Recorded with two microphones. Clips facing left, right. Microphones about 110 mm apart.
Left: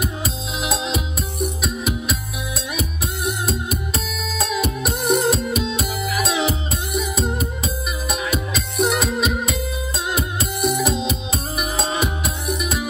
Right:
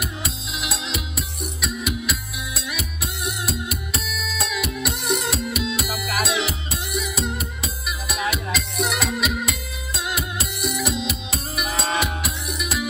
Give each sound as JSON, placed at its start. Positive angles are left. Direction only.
{"t": 0.2, "sound": "music", "side_deg": 35}